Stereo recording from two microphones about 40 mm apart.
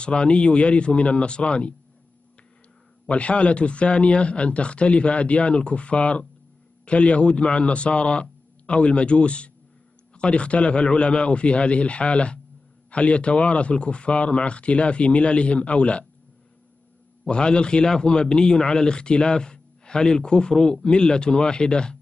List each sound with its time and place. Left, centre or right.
0.0 s speech: left
3.1 s speech: left
17.3 s speech: left